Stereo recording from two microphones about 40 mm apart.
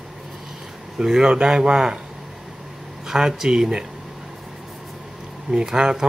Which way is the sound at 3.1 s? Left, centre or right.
Centre.